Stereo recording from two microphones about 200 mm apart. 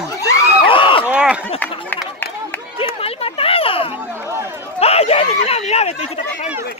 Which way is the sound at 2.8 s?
30° left (ahead or behind).